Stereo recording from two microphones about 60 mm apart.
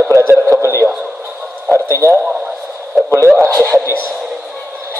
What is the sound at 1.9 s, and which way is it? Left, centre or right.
Speech, right.